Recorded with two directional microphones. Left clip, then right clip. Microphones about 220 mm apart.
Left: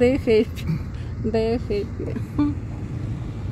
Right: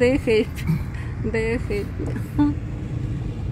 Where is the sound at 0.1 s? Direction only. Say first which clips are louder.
Left 1 dB; 15° left (ahead or behind).